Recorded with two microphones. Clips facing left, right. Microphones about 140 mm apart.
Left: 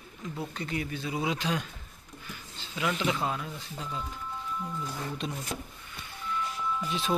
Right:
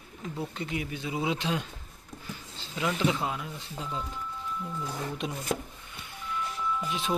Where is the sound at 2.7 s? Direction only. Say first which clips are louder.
Right 2 dB; 25° right (ahead or behind).